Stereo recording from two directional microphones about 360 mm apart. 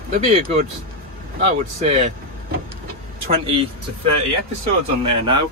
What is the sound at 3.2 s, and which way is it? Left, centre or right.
Speech, centre.